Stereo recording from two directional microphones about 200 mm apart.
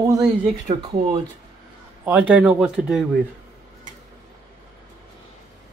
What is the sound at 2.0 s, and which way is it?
Speech, 10° right (ahead or behind).